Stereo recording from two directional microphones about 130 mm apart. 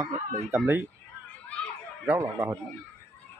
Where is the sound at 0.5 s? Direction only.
20° right (ahead or behind).